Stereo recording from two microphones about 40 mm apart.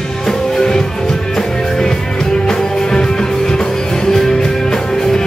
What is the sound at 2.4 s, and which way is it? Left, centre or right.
Music, centre.